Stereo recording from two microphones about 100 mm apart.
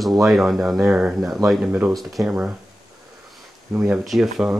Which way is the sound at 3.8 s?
Centre (ahead or behind).